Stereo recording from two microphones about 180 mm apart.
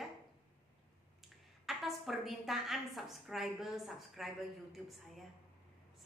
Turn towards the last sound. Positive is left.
turn(degrees=0)  # may be behind; listen again after turning